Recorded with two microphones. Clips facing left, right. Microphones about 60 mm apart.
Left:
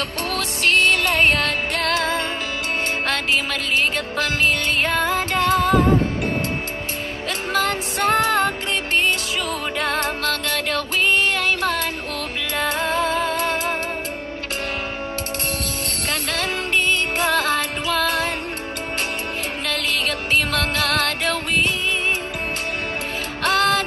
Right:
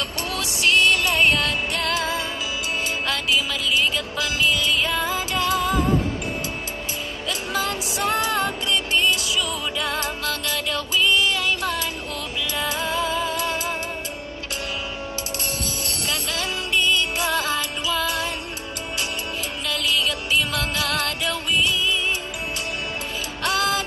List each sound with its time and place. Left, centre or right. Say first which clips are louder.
0.3 s music: left 1 dB; left
7.2 s music: left 4 dB; left
15.6 s music: left 2 dB; left
19.6 s music: right 1 dB; left
23.4 s music: left 4 dB; left